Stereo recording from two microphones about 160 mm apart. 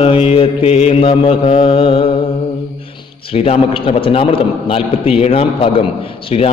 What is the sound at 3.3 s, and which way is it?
Mantra, 35° left (ahead or behind).